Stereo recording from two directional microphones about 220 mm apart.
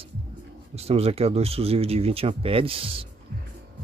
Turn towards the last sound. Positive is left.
turn(degrees=-25)  # may be behind; listen again after turning